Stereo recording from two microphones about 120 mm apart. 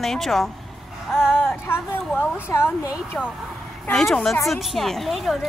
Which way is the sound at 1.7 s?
20° left (ahead or behind).